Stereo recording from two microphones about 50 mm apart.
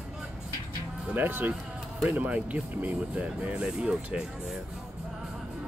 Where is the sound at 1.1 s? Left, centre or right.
Right; by 4.6 s centre.